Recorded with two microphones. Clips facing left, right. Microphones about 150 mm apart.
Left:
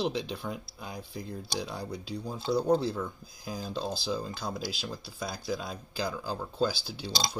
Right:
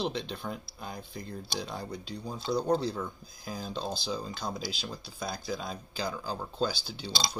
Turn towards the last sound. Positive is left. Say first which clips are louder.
# left 2 dB
turn(degrees=5)  # may be behind; listen again after turning